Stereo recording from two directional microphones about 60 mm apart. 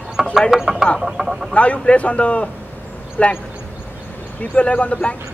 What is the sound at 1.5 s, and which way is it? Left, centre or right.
A man's voice, left.